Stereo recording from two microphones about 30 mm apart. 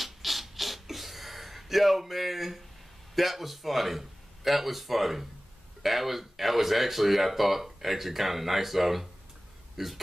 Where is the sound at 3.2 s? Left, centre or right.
Centre.